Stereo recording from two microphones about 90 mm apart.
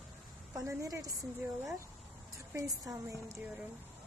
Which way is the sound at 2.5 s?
40° right (ahead or behind).